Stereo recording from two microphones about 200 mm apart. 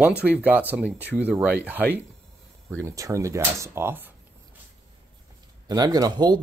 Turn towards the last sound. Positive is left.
turn(degrees=-20)  # may be behind; listen again after turning